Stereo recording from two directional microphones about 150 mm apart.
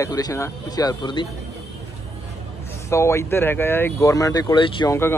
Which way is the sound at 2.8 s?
20° left (ahead or behind).